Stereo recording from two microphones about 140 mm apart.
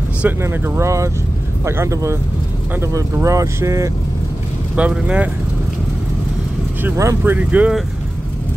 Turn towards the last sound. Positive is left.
turn(degrees=-10)  # may be behind; listen again after turning